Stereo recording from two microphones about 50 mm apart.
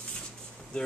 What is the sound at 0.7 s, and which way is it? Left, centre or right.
Speech, left.